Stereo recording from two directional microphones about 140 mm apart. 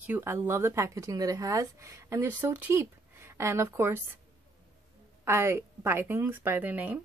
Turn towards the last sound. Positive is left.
turn(degrees=-10)  # may be behind; listen again after turning